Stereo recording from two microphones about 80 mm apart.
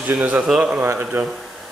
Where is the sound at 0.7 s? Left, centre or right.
Right.